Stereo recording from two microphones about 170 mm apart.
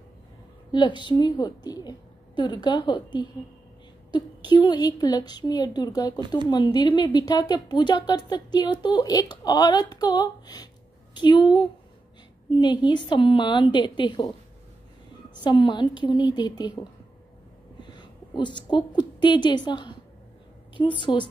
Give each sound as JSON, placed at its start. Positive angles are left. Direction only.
{"t": 0.7, "sound": "a woman's voice", "side_deg": 25}
{"t": 15.4, "sound": "a woman's voice", "side_deg": 30}
{"t": 17.9, "sound": "a woman's voice", "side_deg": 25}
{"t": 21.0, "sound": "a woman's voice", "side_deg": 30}